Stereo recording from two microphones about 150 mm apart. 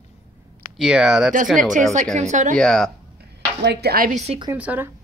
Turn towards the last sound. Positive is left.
turn(degrees=-10)  # may be behind; listen again after turning